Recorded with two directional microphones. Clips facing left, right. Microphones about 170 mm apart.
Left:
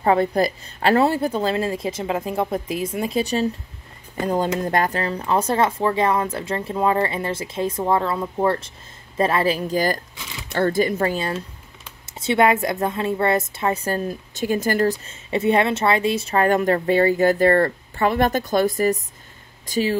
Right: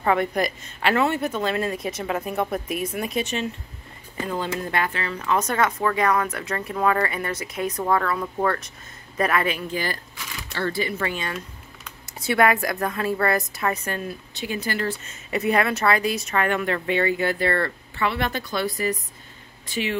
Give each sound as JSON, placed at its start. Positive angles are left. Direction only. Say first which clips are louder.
{"t": 0.0, "sound": "speech", "louder": "left 4 dB", "side_deg": 30}
{"t": 15.0, "sound": "speech", "louder": "left 4 dB", "side_deg": 25}